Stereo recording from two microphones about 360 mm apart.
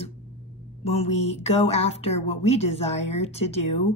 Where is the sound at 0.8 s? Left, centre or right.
Centre.